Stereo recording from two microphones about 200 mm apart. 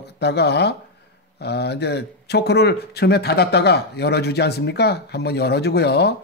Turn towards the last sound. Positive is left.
turn(degrees=55)  # may be behind; listen again after turning